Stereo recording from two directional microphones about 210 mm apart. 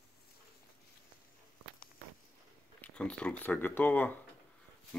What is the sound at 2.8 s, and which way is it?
Speech, 5° left (ahead or behind).